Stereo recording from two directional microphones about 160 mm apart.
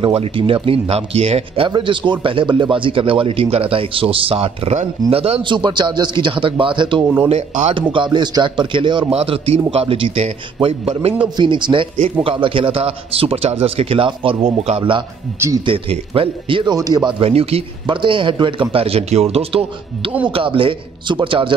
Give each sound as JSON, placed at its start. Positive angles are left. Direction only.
{"t": 0.0, "sound": "speech", "side_deg": -35}
{"t": 1.7, "sound": "speech", "side_deg": -30}
{"t": 7.2, "sound": "speech", "side_deg": -45}
{"t": 7.9, "sound": "speech", "side_deg": -30}
{"t": 15.3, "sound": "speech", "side_deg": -15}
{"t": 15.6, "sound": "speech", "side_deg": -35}